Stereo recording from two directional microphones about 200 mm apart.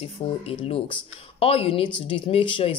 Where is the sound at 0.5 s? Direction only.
30° left (ahead or behind).